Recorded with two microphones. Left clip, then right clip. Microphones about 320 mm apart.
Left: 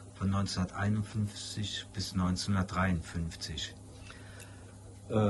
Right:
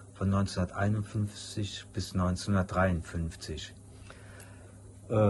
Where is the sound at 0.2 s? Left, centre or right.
Centre.